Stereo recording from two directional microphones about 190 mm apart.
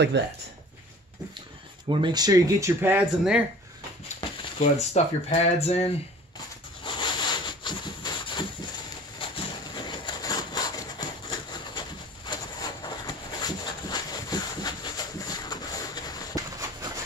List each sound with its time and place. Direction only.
0.2 s speech: 65° right (ahead or behind)
1.9 s speech: 25° right (ahead or behind); by 3.4 s 10° right (ahead or behind)
4.2 s speech: 35° left (ahead or behind)
6.8 s a sound: 25° left (ahead or behind)